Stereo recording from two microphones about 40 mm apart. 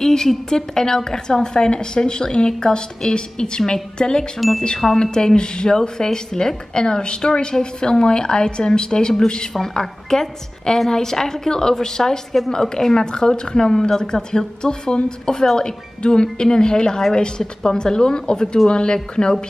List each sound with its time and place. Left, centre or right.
0.0 s a woman's voice: centre
4.4 s chime: centre
4.9 s a woman's voice: centre
12.8 s a woman's voice: centre